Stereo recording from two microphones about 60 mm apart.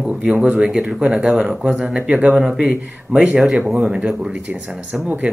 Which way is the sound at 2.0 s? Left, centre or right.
Right.